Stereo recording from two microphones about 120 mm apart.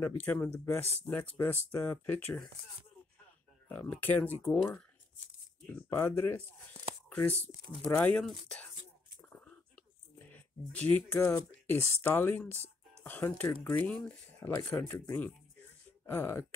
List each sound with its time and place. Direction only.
0.0 s speech: 15° left (ahead or behind)
3.6 s speech: 15° left (ahead or behind)
5.6 s speech: 15° left (ahead or behind)
8.2 s speech: 5° left (ahead or behind)
10.1 s a sound: 15° left (ahead or behind)
11.1 s speech: 20° left (ahead or behind)
14.4 s speech: 20° left (ahead or behind)